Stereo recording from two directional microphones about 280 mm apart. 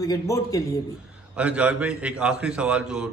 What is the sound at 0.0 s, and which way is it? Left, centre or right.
Speech, centre.